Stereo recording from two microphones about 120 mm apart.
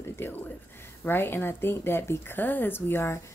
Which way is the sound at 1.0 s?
20° left (ahead or behind).